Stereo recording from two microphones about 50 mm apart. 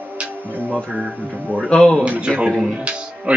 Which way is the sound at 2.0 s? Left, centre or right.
Right.